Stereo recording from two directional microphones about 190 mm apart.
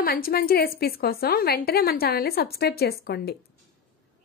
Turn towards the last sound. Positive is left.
turn(degrees=55)  # may be behind; listen again after turning